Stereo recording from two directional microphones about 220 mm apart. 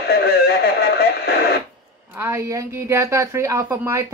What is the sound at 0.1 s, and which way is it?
Radio, 45° left (ahead or behind).